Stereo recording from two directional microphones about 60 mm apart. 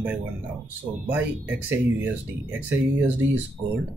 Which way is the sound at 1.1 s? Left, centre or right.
Right.